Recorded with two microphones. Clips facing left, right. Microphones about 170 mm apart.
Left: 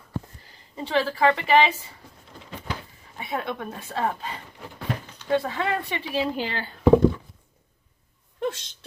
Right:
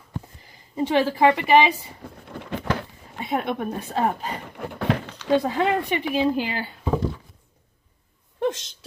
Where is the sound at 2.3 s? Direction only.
65° right (ahead or behind).